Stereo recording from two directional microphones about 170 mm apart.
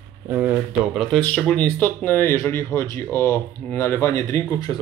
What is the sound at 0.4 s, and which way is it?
A man's voice, 5° right (ahead or behind).